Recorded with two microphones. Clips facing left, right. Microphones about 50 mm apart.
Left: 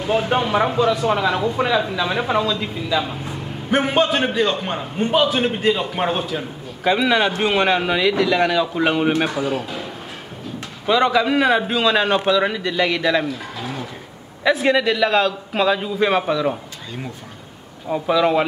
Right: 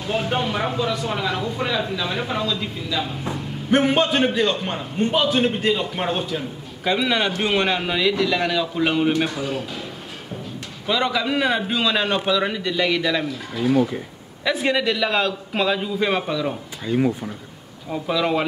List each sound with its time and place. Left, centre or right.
0.1 s a man's voice: centre
3.7 s a man's voice: centre
9.1 s speech: left
9.4 s a man's voice: centre
10.9 s a man's voice: centre
13.6 s a man's voice: centre
16.8 s speech: centre
17.8 s a man's voice: centre